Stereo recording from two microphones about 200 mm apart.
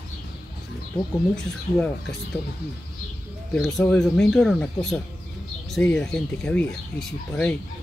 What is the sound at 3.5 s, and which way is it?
Speech, centre (ahead or behind).